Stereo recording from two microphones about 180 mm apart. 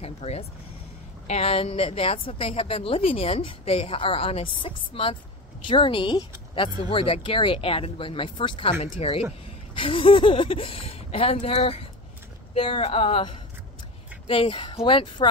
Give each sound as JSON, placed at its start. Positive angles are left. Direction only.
{"t": 0.0, "sound": "a woman's voice", "side_deg": 35}